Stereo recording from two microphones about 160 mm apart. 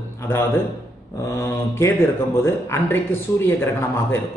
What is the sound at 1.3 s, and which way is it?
A man's voice, 15° left (ahead or behind).